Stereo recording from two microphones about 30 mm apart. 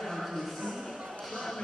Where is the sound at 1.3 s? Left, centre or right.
Centre.